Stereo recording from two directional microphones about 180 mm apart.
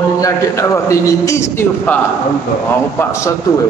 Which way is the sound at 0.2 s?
15° left (ahead or behind).